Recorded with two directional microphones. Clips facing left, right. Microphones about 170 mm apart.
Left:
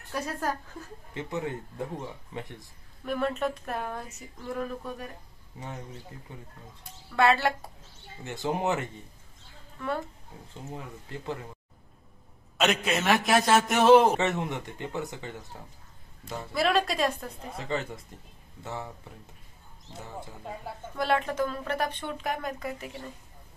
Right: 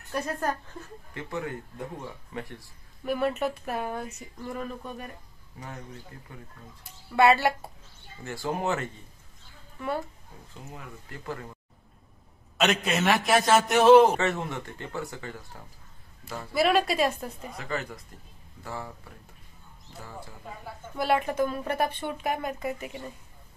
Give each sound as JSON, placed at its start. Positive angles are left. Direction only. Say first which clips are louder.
{"t": 1.1, "sound": "speech", "louder": "left 1 dB", "side_deg": 20}
{"t": 3.1, "sound": "speech", "louder": "right 2 dB", "side_deg": -5}
{"t": 6.3, "sound": "speech", "louder": "even", "side_deg": 25}
{"t": 6.8, "sound": "speech", "louder": "right 3 dB", "side_deg": -5}
{"t": 8.2, "sound": "speech", "louder": "left 1 dB", "side_deg": 20}
{"t": 9.8, "sound": "speech", "louder": "right 1 dB", "side_deg": -5}
{"t": 10.5, "sound": "speech", "louder": "left 3 dB", "side_deg": 25}
{"t": 12.5, "sound": "speech", "louder": "right 1 dB", "side_deg": 0}
{"t": 14.1, "sound": "speech", "louder": "even", "side_deg": 20}
{"t": 16.5, "sound": "speech", "louder": "right 3 dB", "side_deg": -5}
{"t": 17.6, "sound": "speech", "louder": "left 2 dB", "side_deg": 25}
{"t": 20.9, "sound": "speech", "louder": "right 1 dB", "side_deg": -5}